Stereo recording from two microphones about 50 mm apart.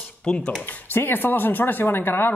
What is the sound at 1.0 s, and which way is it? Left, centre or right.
Speech, left.